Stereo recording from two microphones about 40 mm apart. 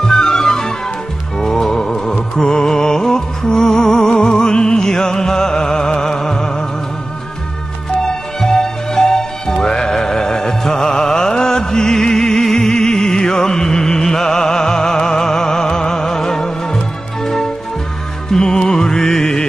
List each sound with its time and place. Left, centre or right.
0.0 s music: centre
8.0 s music: centre